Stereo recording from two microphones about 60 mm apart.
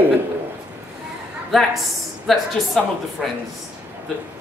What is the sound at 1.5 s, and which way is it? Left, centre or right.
A woman's voice, centre.